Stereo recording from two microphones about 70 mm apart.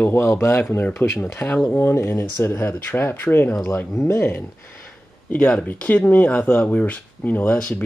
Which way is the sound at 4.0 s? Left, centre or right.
Left.